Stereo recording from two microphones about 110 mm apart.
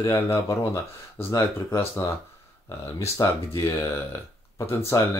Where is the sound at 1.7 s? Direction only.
25° left (ahead or behind).